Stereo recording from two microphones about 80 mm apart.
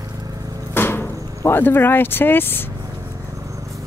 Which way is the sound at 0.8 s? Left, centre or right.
Left.